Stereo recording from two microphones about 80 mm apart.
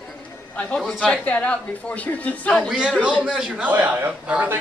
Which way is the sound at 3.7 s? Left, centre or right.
Right.